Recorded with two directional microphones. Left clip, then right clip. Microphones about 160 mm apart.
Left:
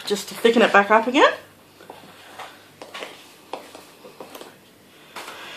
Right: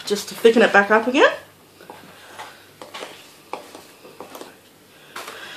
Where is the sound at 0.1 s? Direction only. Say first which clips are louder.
Right 3 dB; 30° left (ahead or behind).